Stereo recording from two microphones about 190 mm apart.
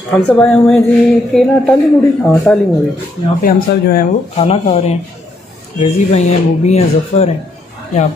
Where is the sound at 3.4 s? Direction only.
50° left (ahead or behind).